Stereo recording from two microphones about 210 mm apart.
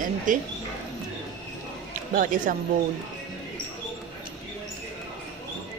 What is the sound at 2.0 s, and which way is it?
Speech, 40° right (ahead or behind).